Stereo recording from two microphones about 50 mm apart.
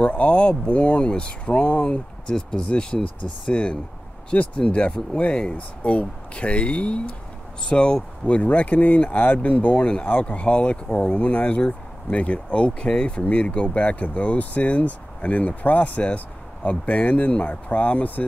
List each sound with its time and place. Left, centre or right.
0.0 s speech: left